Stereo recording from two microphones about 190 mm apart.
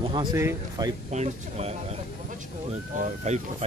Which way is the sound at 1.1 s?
35° right (ahead or behind).